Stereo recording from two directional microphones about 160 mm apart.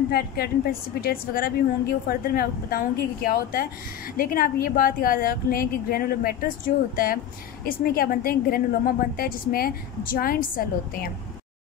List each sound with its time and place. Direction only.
0.1 s a woman's voice: 75° left (ahead or behind)
7.6 s a woman's voice: 70° left (ahead or behind)